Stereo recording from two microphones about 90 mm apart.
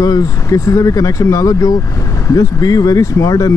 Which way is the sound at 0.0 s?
40° left (ahead or behind).